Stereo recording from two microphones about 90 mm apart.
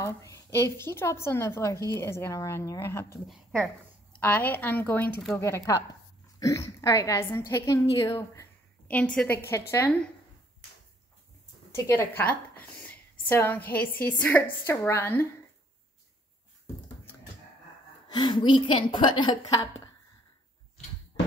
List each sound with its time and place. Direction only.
0.0 s a woman's voice: 40° left (ahead or behind); by 5.1 s 20° left (ahead or behind)
5.4 s speech: 35° left (ahead or behind)
8.8 s a woman's voice: 15° left (ahead or behind)
9.5 s speech: 30° left (ahead or behind)
11.7 s a woman's voice: 30° left (ahead or behind)
12.3 s a woman's voice: 20° left (ahead or behind)
16.6 s a sound: 25° left (ahead or behind)
18.0 s a woman's voice: 55° left (ahead or behind)
19.4 s speech: 40° left (ahead or behind)